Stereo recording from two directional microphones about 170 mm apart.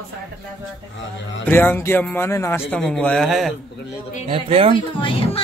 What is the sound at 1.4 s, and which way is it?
A man's voice, 10° left (ahead or behind).